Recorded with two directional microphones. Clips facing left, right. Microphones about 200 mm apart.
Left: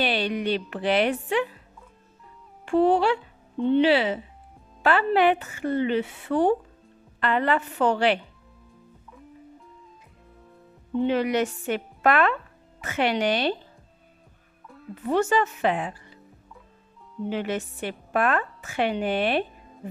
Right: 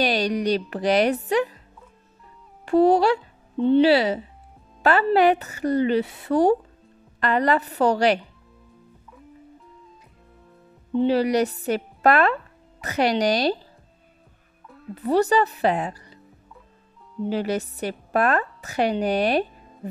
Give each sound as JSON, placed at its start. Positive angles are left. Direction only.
{"t": 0.0, "sound": "a woman's voice", "side_deg": -40}
{"t": 2.6, "sound": "a woman's voice", "side_deg": -40}
{"t": 11.0, "sound": "a woman's voice", "side_deg": -35}
{"t": 15.0, "sound": "a woman's voice", "side_deg": -35}
{"t": 17.3, "sound": "a woman's voice", "side_deg": -40}
{"t": 19.8, "sound": "music", "side_deg": -40}